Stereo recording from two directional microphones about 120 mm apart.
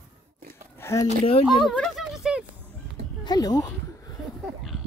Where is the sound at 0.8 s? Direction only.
20° left (ahead or behind).